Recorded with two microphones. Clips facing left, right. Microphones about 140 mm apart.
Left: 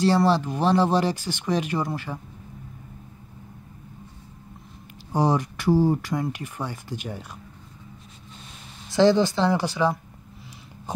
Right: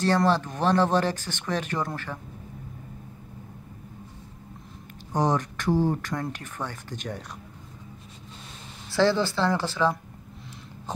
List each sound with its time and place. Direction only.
0.0 s speech: 10° left (ahead or behind)
5.1 s speech: 10° left (ahead or behind)
8.9 s speech: 20° left (ahead or behind)